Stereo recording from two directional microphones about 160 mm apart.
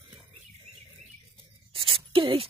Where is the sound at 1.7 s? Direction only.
35° right (ahead or behind).